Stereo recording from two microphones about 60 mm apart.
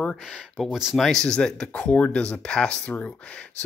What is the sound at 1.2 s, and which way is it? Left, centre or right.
Speech, centre.